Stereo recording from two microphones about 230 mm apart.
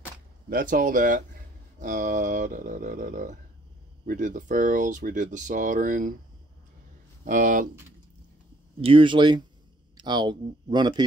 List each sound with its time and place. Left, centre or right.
0.5 s speech: right
7.2 s speech: right
8.8 s speech: right